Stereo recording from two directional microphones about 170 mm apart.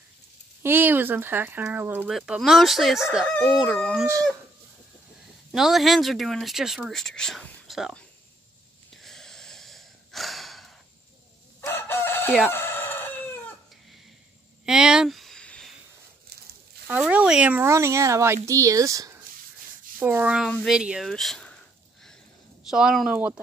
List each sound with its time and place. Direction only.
0.6 s speech: 10° right (ahead or behind)
4.0 s chicken: 20° right (ahead or behind)
5.5 s speech: centre (ahead or behind)
8.9 s wheeze: centre (ahead or behind)
11.6 s chicken: 15° left (ahead or behind)
14.7 s a sound: 5° right (ahead or behind)
16.8 s speech: 10° right (ahead or behind)
20.0 s speech: 10° right (ahead or behind)
22.7 s speech: 5° right (ahead or behind)